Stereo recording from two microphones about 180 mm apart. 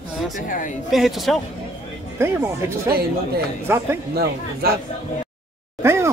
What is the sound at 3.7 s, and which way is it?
Speech, 15° right (ahead or behind).